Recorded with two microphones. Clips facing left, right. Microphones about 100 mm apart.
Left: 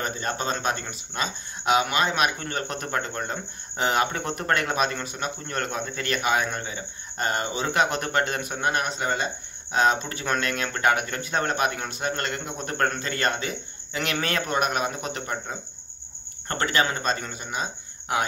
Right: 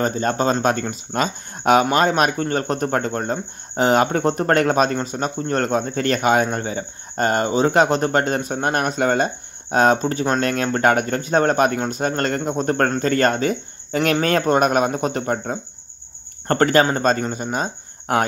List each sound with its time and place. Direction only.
0.0 s speech: 40° right (ahead or behind)
8.7 s speech: 50° right (ahead or behind)